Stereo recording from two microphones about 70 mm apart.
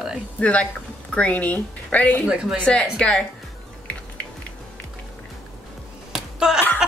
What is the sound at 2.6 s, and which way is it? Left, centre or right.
Speech, centre.